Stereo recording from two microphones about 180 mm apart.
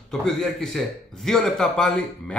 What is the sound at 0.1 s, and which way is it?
Speech, centre (ahead or behind).